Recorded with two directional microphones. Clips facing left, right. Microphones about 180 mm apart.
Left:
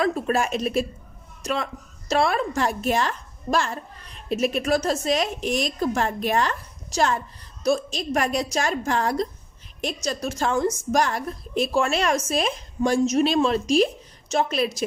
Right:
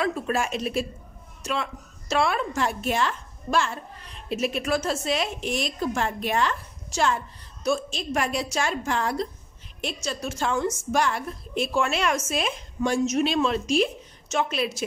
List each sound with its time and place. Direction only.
0.0 s a woman's voice: 40° left (ahead or behind)